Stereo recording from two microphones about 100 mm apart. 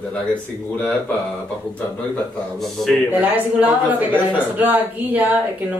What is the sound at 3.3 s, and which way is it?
A woman's voice, 15° right (ahead or behind).